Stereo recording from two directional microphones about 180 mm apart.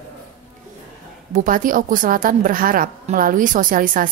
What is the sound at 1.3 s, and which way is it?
A woman's voice, 45° right (ahead or behind).